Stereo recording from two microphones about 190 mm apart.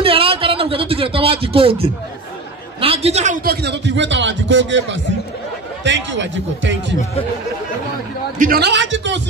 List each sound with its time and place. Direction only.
0.0 s a sound: 30° right (ahead or behind)
2.8 s a man's voice: 30° right (ahead or behind)
3.4 s a man's voice: 65° right (ahead or behind)
8.4 s a man's voice: 55° right (ahead or behind); by 9.2 s 75° right (ahead or behind)